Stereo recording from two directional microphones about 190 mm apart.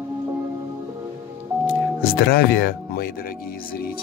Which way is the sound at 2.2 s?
55° left (ahead or behind).